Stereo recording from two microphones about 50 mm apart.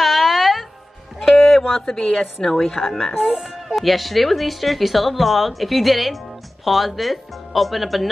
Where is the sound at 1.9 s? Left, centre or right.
Centre.